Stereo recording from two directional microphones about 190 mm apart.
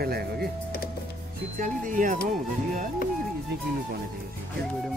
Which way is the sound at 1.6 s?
45° right (ahead or behind).